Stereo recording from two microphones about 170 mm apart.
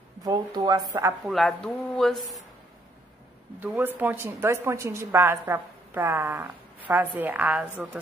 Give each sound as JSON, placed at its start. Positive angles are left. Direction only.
{"t": 0.2, "sound": "speech", "side_deg": -20}
{"t": 1.2, "sound": "speech", "side_deg": 0}
{"t": 3.5, "sound": "a woman's voice", "side_deg": -10}